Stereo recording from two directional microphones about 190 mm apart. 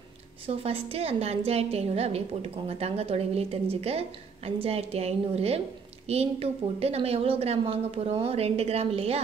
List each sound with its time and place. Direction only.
0.5 s a woman's voice: 30° right (ahead or behind)